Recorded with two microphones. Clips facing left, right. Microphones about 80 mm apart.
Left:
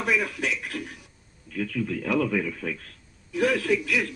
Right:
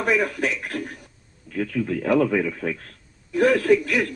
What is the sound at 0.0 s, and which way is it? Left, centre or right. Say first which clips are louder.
Speech: right 4 dB; right.